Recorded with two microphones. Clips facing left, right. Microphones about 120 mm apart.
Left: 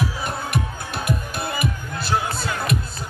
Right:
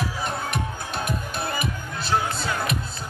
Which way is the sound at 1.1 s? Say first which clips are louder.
Left 5 dB; 5° left (ahead or behind).